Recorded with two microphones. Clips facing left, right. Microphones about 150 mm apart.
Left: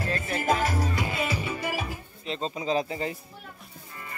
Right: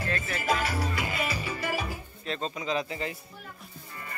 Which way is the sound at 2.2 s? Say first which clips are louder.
Left 3 dB; 25° left (ahead or behind).